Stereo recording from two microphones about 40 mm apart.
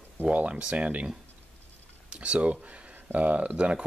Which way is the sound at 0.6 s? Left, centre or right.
Right.